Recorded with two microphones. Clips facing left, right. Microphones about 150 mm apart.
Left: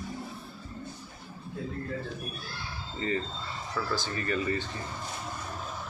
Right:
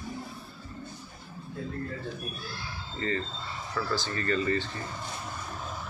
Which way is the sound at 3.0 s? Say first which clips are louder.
Even; 15° left (ahead or behind).